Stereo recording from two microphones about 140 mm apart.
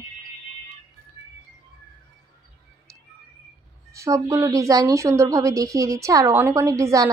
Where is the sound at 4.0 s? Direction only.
25° right (ahead or behind).